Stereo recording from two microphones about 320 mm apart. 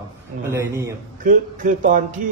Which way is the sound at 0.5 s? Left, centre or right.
Centre.